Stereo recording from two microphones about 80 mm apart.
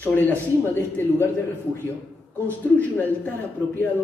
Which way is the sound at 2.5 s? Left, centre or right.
Centre.